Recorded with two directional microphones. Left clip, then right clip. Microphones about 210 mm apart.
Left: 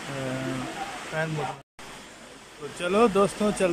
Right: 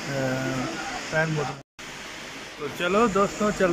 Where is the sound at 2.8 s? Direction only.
10° left (ahead or behind).